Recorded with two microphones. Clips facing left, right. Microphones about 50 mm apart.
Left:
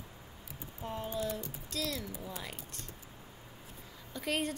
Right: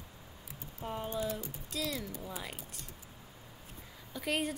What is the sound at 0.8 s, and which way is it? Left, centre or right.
A woman's voice, centre.